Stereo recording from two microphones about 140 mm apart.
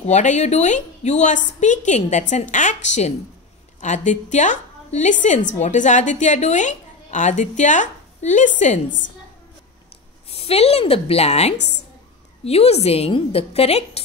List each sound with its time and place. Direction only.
0.0 s a woman's voice: 55° left (ahead or behind)
10.3 s a woman's voice: 45° left (ahead or behind)